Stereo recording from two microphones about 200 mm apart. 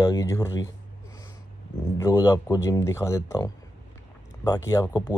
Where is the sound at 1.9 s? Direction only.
15° left (ahead or behind).